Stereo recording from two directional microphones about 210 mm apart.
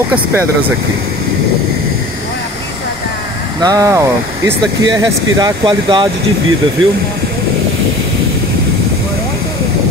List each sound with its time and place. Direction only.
3.6 s speech: 15° right (ahead or behind)